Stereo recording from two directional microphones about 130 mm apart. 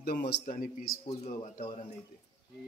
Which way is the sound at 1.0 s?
60° left (ahead or behind).